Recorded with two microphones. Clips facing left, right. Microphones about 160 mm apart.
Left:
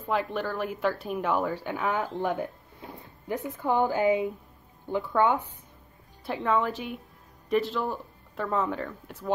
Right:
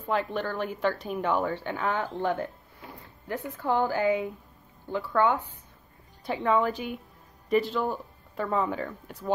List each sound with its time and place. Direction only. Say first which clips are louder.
0.1 s speech: even; centre (ahead or behind)
2.4 s a sound: left 1 dB; 20° left (ahead or behind)
3.6 s a woman's voice: left 1 dB; 20° left (ahead or behind)
6.2 s speech: right 2 dB; centre (ahead or behind)